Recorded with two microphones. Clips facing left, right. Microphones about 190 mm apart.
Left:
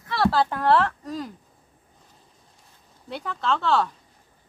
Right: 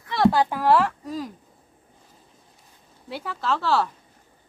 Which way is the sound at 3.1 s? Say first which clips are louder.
Even; 5° right (ahead or behind).